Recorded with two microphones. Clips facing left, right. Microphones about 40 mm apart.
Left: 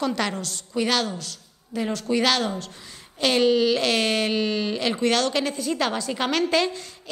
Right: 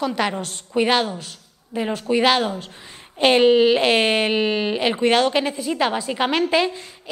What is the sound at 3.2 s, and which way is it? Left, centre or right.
Speech, right.